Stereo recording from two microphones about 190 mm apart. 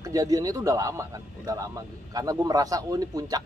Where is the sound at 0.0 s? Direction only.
20° right (ahead or behind).